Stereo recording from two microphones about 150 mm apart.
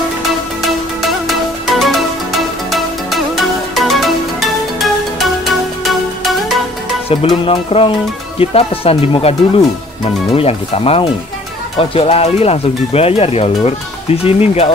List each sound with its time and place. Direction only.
0.6 s music: centre (ahead or behind)
7.1 s speech: 35° left (ahead or behind)
10.3 s speech: 40° left (ahead or behind)